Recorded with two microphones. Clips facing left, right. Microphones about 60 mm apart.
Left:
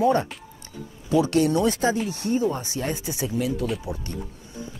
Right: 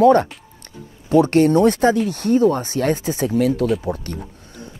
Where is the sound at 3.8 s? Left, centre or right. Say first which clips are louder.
Right 6 dB; right.